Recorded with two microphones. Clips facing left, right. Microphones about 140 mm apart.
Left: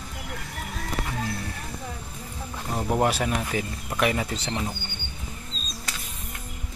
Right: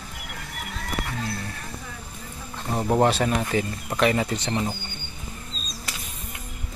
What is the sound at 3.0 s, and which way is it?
Speech, 5° left (ahead or behind).